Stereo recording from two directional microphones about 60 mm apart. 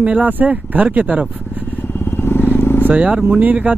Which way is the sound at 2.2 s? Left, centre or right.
Left.